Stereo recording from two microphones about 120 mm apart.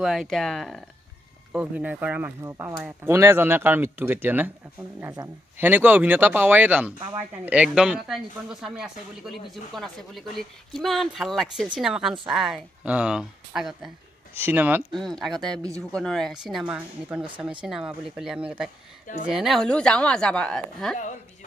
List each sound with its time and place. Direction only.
0.0 s speech: 5° right (ahead or behind)
1.5 s speech: 10° right (ahead or behind)
2.4 s speech: 25° right (ahead or behind)
5.6 s speech: 15° right (ahead or behind)
14.3 s speech: 15° right (ahead or behind)
14.9 s a woman's voice: 5° left (ahead or behind)